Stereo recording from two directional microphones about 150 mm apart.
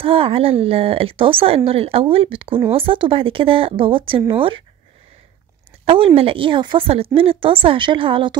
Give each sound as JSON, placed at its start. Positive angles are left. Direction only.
{"t": 0.0, "sound": "a woman's voice", "side_deg": -40}
{"t": 5.9, "sound": "a woman's voice", "side_deg": -35}